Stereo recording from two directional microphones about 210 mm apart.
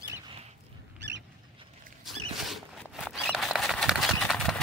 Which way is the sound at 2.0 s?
Centre (ahead or behind).